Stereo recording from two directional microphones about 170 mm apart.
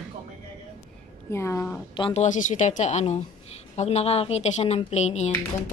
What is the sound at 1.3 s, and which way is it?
Speech, 15° left (ahead or behind).